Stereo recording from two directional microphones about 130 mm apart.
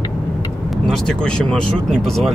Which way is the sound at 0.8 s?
5° left (ahead or behind).